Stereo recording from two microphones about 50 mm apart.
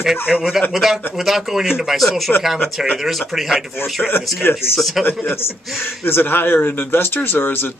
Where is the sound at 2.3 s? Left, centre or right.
Left.